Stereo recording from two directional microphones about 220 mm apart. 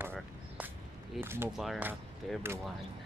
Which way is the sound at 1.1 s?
10° right (ahead or behind).